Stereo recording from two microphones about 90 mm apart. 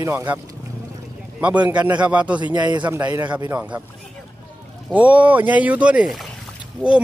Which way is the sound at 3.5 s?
15° right (ahead or behind).